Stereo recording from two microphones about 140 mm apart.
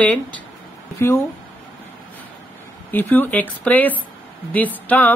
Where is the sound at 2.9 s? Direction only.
15° left (ahead or behind).